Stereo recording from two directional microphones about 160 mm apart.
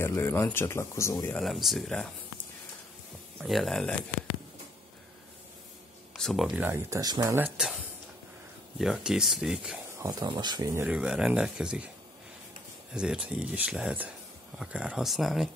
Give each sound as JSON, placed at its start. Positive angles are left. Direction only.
{"t": 0.0, "sound": "speech", "side_deg": 15}
{"t": 1.4, "sound": "speech", "side_deg": 0}
{"t": 3.3, "sound": "speech", "side_deg": 0}
{"t": 6.1, "sound": "speech", "side_deg": 0}
{"t": 7.3, "sound": "speech", "side_deg": -10}
{"t": 8.7, "sound": "speech", "side_deg": 0}
{"t": 9.9, "sound": "speech", "side_deg": -25}
{"t": 11.0, "sound": "speech", "side_deg": -5}
{"t": 12.9, "sound": "speech", "side_deg": -5}